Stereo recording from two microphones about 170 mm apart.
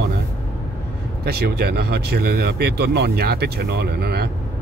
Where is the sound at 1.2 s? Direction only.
70° right (ahead or behind).